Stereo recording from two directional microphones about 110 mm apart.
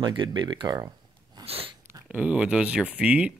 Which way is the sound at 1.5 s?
60° right (ahead or behind).